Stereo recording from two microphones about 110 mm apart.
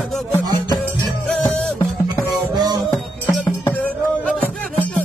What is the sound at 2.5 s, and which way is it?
Music, 40° right (ahead or behind).